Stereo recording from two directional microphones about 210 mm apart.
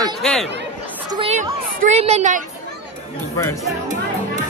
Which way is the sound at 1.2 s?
35° right (ahead or behind).